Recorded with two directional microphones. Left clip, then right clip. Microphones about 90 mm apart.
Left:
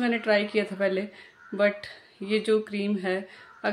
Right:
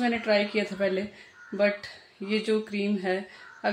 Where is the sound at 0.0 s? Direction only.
15° left (ahead or behind).